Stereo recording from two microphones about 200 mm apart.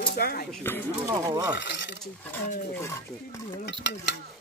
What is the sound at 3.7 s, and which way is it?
Stir, 60° left (ahead or behind).